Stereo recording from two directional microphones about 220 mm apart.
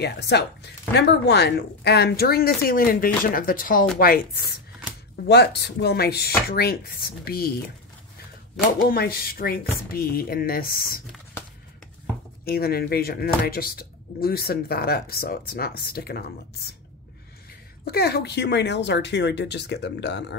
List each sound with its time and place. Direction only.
0.0 s speech: 50° left (ahead or behind)
8.7 s speech: 40° left (ahead or behind)
12.4 s speech: 45° left (ahead or behind)
17.8 s speech: 45° left (ahead or behind)